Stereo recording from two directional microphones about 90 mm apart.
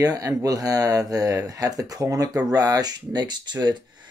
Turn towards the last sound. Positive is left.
turn(degrees=-50)  # may be behind; listen again after turning